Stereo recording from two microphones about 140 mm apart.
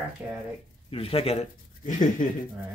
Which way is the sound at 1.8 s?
70° left (ahead or behind).